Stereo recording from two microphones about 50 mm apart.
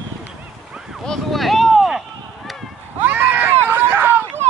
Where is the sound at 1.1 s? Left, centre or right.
Centre.